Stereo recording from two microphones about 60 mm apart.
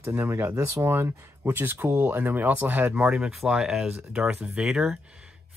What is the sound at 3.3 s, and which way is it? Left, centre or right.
Speech, centre.